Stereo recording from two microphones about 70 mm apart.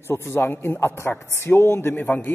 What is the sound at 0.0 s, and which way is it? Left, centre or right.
A man's voice, left.